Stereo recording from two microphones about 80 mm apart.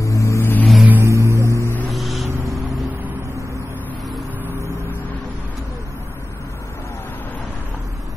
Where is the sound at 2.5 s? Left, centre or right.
Centre.